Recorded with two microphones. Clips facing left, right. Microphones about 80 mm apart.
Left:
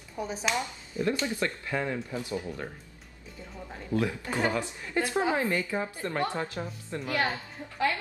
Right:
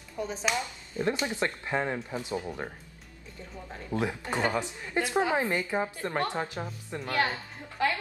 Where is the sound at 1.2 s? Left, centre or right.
Right.